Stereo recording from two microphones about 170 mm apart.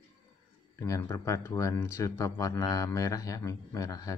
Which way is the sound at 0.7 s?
20° left (ahead or behind).